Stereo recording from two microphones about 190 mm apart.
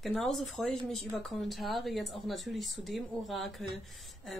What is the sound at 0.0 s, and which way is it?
Speech, centre (ahead or behind).